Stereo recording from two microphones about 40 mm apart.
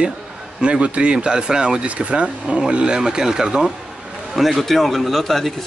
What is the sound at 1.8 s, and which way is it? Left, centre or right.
Speech, right.